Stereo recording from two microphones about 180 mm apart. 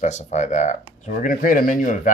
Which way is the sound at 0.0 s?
40° left (ahead or behind).